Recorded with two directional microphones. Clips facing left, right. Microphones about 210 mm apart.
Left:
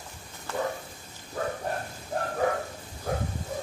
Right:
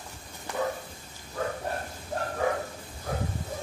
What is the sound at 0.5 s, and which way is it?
Bow-wow, 15° right (ahead or behind).